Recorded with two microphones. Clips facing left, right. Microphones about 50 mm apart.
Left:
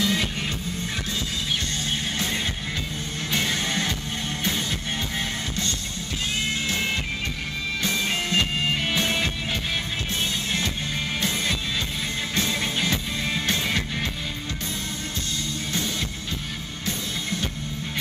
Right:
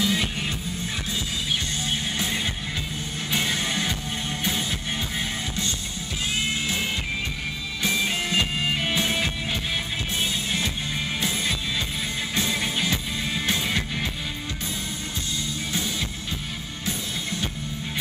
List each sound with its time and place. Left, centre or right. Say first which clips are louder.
0.0 s music: even; centre
3.3 s music: even; centre
7.8 s music: right 2 dB; centre
11.1 s music: left 1 dB; centre